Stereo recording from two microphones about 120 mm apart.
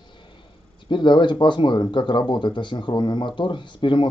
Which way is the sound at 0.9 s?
40° left (ahead or behind).